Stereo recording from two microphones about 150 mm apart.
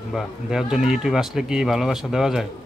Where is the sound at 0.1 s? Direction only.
Centre (ahead or behind).